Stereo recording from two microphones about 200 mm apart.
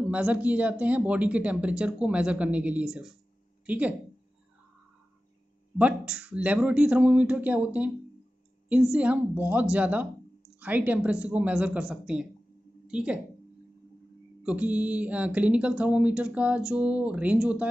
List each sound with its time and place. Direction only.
0.1 s speech: 5° right (ahead or behind)
5.8 s speech: 5° right (ahead or behind)
8.9 s a woman's voice: 5° right (ahead or behind)
14.4 s speech: 5° right (ahead or behind)